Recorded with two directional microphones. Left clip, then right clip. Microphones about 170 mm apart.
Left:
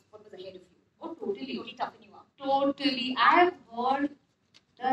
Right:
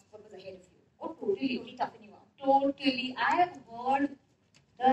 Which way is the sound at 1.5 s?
45° left (ahead or behind).